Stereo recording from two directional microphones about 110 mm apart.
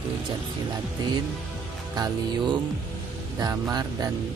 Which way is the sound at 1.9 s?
40° right (ahead or behind).